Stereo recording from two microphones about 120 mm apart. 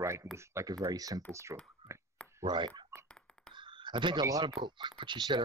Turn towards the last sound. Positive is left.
turn(degrees=-40)  # may be behind; listen again after turning